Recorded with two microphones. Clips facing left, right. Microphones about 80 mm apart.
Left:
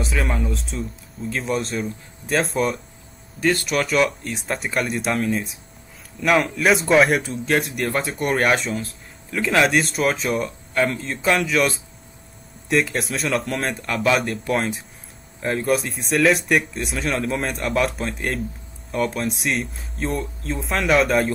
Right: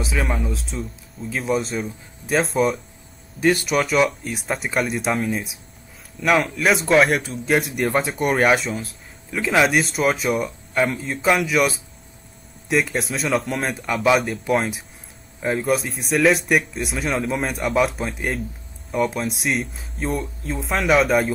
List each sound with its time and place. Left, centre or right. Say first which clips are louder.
0.0 s speech: even; centre